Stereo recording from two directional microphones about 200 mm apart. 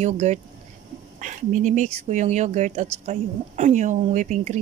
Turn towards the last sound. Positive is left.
turn(degrees=-40)  # may be behind; listen again after turning